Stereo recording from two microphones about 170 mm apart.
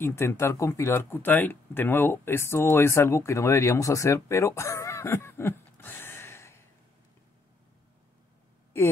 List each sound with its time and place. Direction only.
0.0 s speech: 15° left (ahead or behind)
8.7 s a woman's voice: 15° left (ahead or behind)